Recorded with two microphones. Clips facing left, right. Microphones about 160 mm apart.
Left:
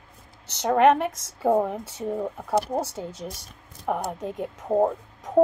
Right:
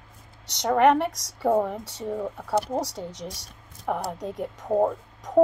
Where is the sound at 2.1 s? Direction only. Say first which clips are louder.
Left 1 dB; 5° left (ahead or behind).